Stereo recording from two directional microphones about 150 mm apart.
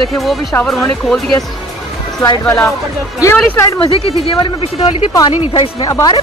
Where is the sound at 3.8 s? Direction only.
40° left (ahead or behind).